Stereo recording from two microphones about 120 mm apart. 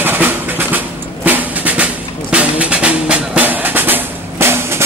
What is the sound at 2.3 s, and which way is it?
Music, 10° right (ahead or behind).